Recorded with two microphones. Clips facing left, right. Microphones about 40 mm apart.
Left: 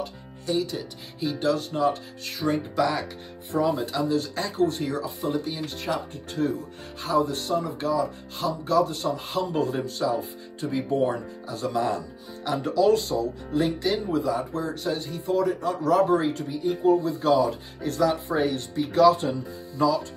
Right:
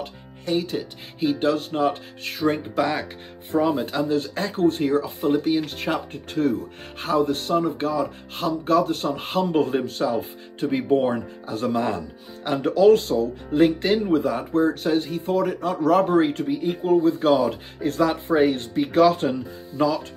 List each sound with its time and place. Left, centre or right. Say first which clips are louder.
0.5 s speech: right 3 dB; right